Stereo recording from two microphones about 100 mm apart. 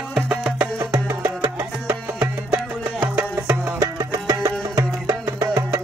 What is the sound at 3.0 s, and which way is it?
Music, 20° right (ahead or behind).